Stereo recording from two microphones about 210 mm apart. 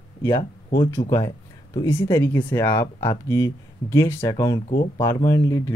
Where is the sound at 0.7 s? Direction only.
15° left (ahead or behind).